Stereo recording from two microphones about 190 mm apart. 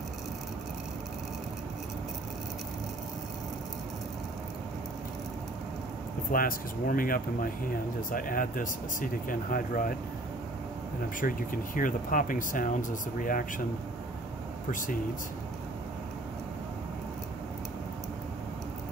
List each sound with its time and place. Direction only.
6.3 s speech: 50° left (ahead or behind)
11.1 s speech: 45° left (ahead or behind)
14.7 s speech: 45° left (ahead or behind)